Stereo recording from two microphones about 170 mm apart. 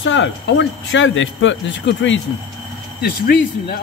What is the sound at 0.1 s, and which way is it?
Speech, 90° left.